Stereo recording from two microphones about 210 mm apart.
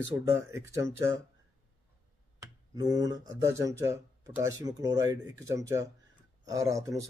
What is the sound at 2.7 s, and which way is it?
Speech, 20° right (ahead or behind).